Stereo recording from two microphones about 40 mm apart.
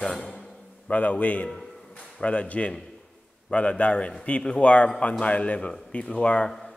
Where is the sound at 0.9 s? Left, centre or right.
Left.